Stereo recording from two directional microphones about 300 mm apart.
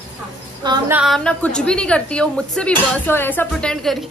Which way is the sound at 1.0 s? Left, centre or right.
Centre.